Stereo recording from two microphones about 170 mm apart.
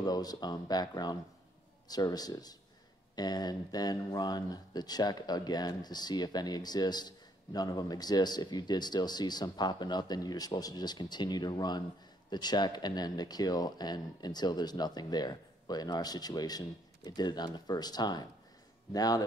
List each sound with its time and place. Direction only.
0.0 s speech: 25° left (ahead or behind)